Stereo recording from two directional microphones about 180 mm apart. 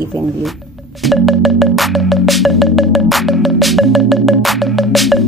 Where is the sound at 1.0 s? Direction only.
Centre (ahead or behind).